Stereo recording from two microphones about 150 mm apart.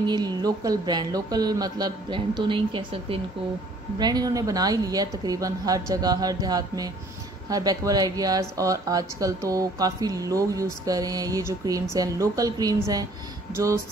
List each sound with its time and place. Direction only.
0.0 s speech: 30° right (ahead or behind)